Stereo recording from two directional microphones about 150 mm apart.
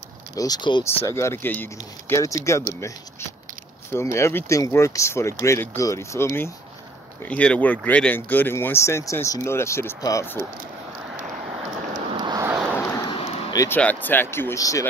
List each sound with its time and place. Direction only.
0.4 s speech: 30° left (ahead or behind)
1.0 s speech: 20° left (ahead or behind)
3.9 s speech: 15° left (ahead or behind)
11.6 s rain: 50° right (ahead or behind)
12.1 s a sound: 30° right (ahead or behind)
13.0 s a sound: 35° left (ahead or behind)
13.7 s speech: 10° left (ahead or behind)